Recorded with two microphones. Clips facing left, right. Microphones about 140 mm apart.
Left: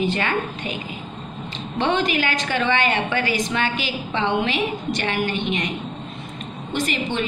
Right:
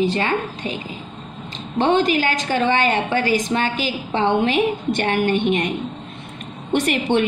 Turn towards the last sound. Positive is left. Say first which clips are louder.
# right 6 dB
turn(degrees=-65)  # may be behind; listen again after turning